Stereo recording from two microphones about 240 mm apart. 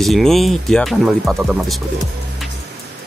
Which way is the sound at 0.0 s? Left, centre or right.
Centre.